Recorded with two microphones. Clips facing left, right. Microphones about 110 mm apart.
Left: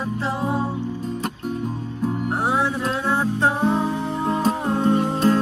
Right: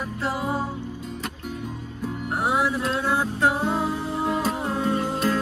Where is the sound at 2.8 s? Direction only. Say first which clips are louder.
Left 1 dB; centre (ahead or behind).